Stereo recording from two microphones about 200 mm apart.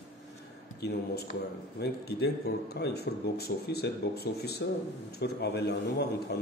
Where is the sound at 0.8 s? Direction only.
50° left (ahead or behind).